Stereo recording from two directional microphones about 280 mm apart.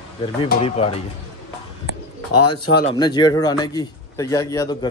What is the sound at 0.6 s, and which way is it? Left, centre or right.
Speech, left.